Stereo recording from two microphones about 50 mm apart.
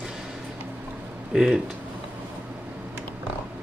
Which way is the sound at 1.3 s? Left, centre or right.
Centre.